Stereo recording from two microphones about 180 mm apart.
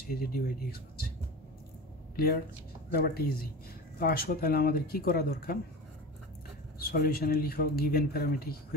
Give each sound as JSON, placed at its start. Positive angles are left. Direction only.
{"t": 0.1, "sound": "speech", "side_deg": 55}
{"t": 2.9, "sound": "speech", "side_deg": 55}
{"t": 6.8, "sound": "speech", "side_deg": 55}